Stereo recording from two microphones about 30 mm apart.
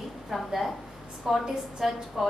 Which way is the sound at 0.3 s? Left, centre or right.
Centre.